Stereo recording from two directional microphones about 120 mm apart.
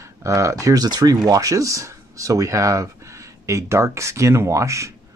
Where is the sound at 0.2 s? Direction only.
25° right (ahead or behind).